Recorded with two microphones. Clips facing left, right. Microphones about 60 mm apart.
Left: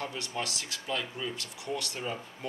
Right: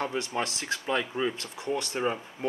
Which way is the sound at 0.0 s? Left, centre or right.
Right.